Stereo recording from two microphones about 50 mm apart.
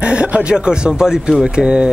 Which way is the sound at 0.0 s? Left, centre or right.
Right.